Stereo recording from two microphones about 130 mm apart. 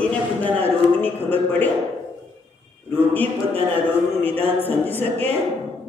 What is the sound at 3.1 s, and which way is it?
A man's voice, 15° left (ahead or behind).